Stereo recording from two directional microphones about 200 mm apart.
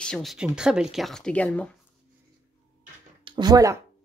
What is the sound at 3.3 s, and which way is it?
Speech, 20° right (ahead or behind).